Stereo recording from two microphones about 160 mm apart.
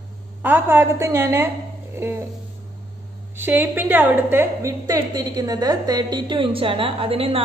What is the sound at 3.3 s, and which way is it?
A woman's voice, 10° right (ahead or behind).